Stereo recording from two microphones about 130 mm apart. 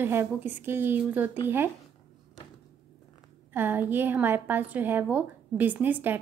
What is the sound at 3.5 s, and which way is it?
A woman's voice, 15° right (ahead or behind).